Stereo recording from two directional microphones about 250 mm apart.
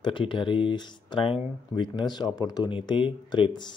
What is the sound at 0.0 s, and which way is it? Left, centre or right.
Speech, centre.